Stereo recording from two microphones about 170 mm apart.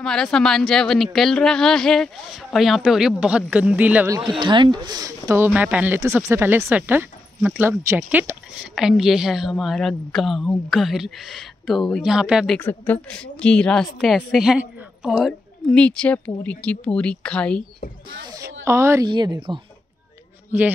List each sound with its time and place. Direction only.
0.0 s speech: 5° left (ahead or behind)
4.4 s speech: 25° right (ahead or behind); by 12.5 s 5° right (ahead or behind)
12.5 s speech: 10° left (ahead or behind)
18.2 s a woman's voice: 20° right (ahead or behind)